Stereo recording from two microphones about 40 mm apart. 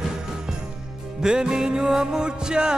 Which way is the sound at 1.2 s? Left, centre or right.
Centre.